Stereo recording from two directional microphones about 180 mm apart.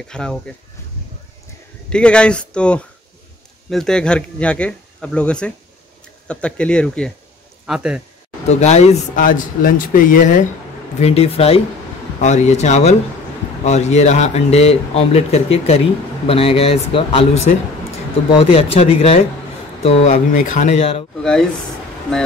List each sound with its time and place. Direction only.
0.1 s speech: 5° left (ahead or behind)
1.9 s speech: 5° left (ahead or behind)
8.5 s speech: 40° left (ahead or behind)
11.0 s speech: 35° left (ahead or behind)
21.2 s speech: 5° left (ahead or behind)